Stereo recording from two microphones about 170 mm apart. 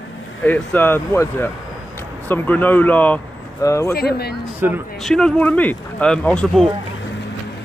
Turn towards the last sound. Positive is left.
turn(degrees=5)  # may be behind; listen again after turning